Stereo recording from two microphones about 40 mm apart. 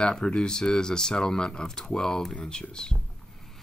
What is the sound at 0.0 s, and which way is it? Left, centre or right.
Speech, left.